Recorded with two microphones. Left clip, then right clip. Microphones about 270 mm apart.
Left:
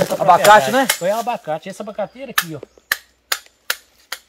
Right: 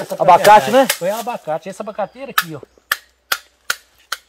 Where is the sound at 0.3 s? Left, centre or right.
Right.